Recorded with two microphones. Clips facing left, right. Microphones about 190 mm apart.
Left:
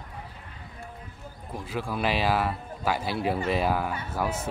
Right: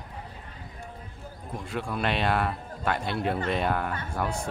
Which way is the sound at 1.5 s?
Centre (ahead or behind).